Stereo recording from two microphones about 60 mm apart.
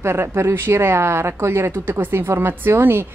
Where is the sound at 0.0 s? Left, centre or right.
Right.